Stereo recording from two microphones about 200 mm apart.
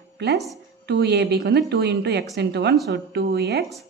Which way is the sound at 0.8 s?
55° right (ahead or behind).